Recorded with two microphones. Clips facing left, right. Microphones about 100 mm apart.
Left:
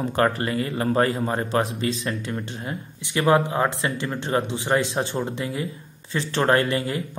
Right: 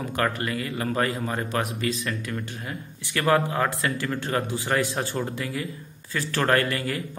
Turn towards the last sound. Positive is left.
turn(degrees=25)  # may be behind; listen again after turning